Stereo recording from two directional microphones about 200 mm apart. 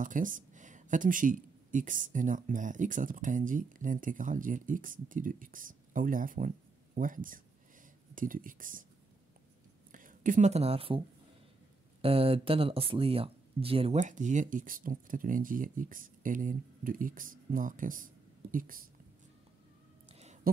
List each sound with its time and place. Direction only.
0.0 s speech: 40° right (ahead or behind)
9.9 s speech: 40° right (ahead or behind)
12.0 s speech: 30° right (ahead or behind); by 18.9 s 45° right (ahead or behind)
20.1 s a sound: 30° right (ahead or behind)